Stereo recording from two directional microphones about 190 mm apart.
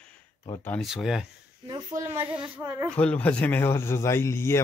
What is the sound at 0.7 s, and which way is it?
Speech, centre (ahead or behind).